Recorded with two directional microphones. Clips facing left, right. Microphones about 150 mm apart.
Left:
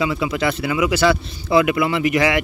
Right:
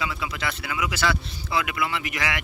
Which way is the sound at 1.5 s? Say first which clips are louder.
Left 10 dB; 30° left (ahead or behind).